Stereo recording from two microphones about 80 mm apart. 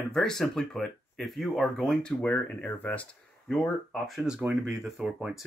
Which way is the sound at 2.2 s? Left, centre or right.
Centre.